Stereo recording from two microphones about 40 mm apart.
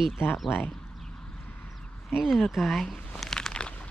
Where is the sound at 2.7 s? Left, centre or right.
Centre.